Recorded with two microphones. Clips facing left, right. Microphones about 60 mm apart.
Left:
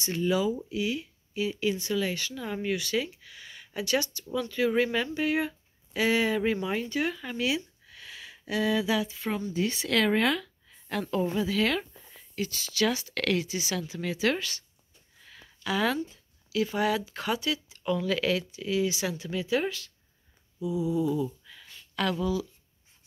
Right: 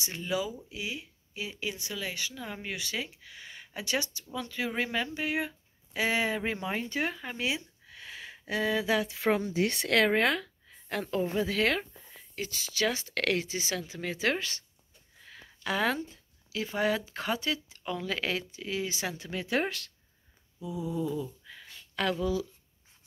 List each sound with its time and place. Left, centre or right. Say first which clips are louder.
0.0 s speech: left 6 dB; centre
2.7 s speech: left 8 dB; centre; by 9.0 s right
9.0 s speech: right 4 dB; right
10.0 s speech: left 1 dB; right
11.4 s speech: left 1 dB; right
12.4 s speech: left 3 dB; right
15.6 s speech: left 2 dB; right
17.8 s speech: left 6 dB; right
19.4 s speech: left 1 dB; right
20.7 s a sound: left 6 dB; centre
21.5 s a sound: right 1 dB; right
22.2 s speech: left 1 dB; right